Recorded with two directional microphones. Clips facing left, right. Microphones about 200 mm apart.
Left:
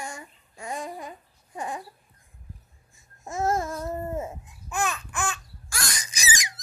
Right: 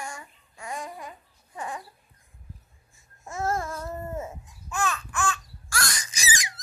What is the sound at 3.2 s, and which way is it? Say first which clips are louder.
Babbling: left 3 dB; 20° left (ahead or behind).